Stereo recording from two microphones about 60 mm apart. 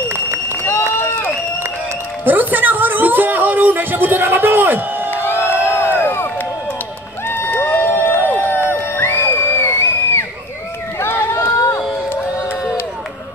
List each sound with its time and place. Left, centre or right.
0.9 s run: left
2.2 s a woman's voice: right
5.1 s crowd: left
7.2 s crowd: left
8.5 s a sound: right
8.9 s music: left
11.0 s run: left